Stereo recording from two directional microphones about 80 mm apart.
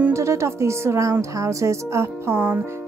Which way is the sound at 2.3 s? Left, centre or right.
Right.